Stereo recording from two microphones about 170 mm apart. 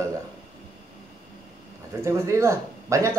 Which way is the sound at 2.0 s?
15° right (ahead or behind).